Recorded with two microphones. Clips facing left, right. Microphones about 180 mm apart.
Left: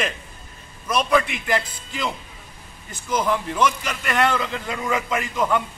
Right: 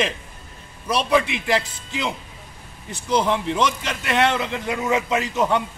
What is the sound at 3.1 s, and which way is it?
A man's voice, 25° right (ahead or behind).